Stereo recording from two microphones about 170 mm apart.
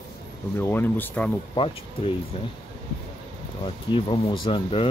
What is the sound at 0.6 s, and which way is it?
Speech, 10° left (ahead or behind).